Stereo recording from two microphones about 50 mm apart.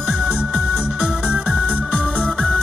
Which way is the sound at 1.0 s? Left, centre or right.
Right.